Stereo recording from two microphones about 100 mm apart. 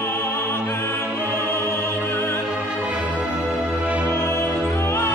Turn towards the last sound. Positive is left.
turn(degrees=25)  # may be behind; listen again after turning